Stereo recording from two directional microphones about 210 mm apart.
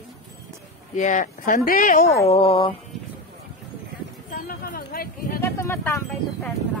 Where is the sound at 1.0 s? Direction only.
35° left (ahead or behind).